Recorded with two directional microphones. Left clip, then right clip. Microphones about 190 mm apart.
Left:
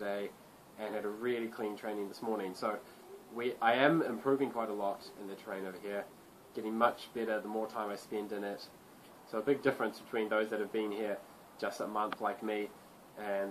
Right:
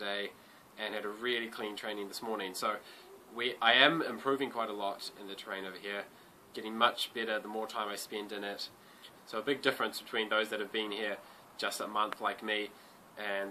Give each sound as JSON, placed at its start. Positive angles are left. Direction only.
{"t": 0.0, "sound": "a sound", "side_deg": -10}
{"t": 0.7, "sound": "speech", "side_deg": -15}
{"t": 2.0, "sound": "speech", "side_deg": -25}
{"t": 2.6, "sound": "speech", "side_deg": -15}